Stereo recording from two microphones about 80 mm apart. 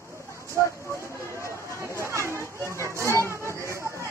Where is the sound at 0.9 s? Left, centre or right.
Right.